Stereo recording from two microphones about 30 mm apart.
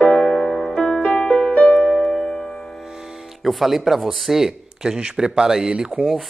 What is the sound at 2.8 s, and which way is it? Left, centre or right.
Speech, centre.